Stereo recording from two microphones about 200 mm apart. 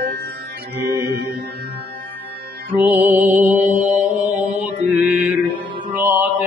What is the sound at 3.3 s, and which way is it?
Mantra, 40° right (ahead or behind).